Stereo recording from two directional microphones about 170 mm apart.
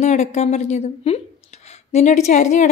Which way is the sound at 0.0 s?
40° left (ahead or behind).